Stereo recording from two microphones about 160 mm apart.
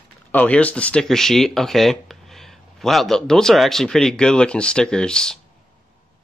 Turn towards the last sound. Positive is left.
turn(degrees=5)  # may be behind; listen again after turning